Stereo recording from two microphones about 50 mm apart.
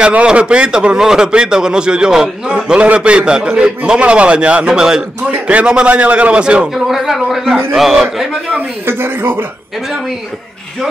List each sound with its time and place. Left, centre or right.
0.0 s speech: right
5.3 s speech: right
6.7 s a man's voice: centre
8.8 s speech: right